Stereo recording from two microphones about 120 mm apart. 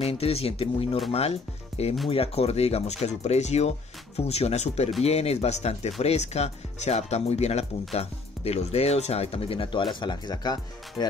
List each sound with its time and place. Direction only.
0.0 s speech: 55° left (ahead or behind); by 11.1 s 35° left (ahead or behind)